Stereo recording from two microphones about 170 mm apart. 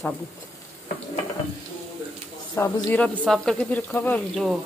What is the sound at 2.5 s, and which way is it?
Speech, 10° left (ahead or behind).